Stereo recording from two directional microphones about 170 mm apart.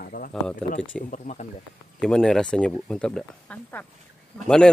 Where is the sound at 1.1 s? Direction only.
45° left (ahead or behind).